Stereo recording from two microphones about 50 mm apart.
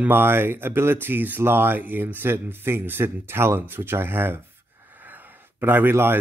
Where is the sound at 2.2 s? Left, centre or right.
Right.